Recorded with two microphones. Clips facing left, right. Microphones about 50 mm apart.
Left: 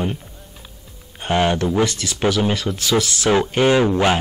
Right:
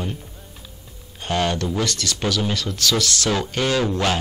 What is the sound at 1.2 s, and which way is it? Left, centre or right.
Speech, left.